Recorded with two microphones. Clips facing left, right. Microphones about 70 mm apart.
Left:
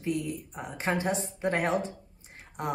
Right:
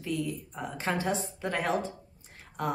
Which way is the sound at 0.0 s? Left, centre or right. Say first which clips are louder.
Left 1 dB; left.